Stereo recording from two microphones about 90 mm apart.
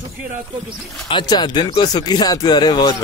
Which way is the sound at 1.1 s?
55° left (ahead or behind).